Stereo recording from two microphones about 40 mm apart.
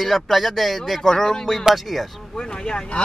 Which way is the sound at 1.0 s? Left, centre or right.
Centre.